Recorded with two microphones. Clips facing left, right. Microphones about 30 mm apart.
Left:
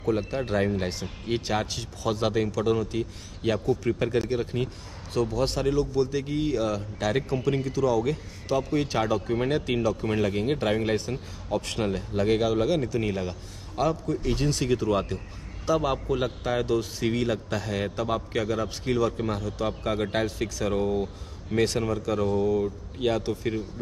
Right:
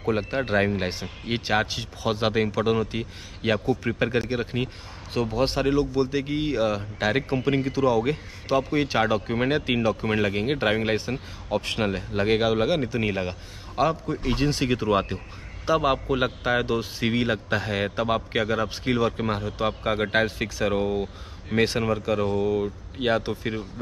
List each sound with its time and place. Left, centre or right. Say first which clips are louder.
0.0 s speech: right 2 dB; right